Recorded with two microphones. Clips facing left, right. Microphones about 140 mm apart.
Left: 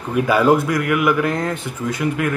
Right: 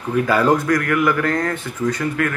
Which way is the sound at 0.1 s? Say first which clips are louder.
Left 1 dB; 15° left (ahead or behind).